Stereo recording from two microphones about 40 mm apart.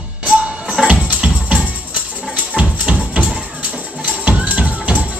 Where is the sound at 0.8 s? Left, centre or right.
Right.